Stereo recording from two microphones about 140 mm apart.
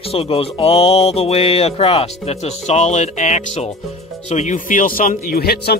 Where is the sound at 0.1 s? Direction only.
45° left (ahead or behind).